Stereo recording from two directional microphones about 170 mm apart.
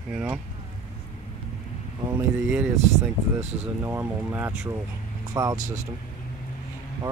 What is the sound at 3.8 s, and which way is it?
Speech, 15° right (ahead or behind).